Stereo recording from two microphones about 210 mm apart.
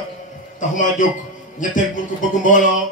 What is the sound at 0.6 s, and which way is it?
A man's voice, 35° left (ahead or behind).